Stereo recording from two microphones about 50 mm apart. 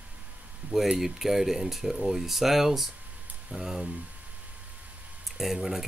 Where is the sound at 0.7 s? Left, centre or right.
Centre.